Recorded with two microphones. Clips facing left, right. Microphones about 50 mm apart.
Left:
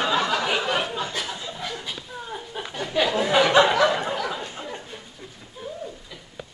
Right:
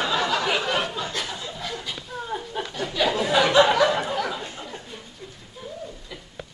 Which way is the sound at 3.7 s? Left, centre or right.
Centre.